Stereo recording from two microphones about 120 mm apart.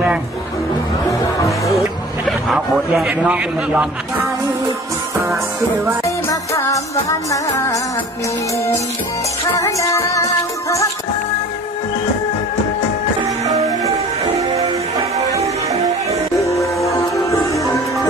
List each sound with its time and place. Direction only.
1.7 s a sound: centre (ahead or behind)
6.0 s music: 25° left (ahead or behind)
9.6 s music: 25° left (ahead or behind)
15.3 s music: 25° right (ahead or behind)
16.4 s music: 25° left (ahead or behind)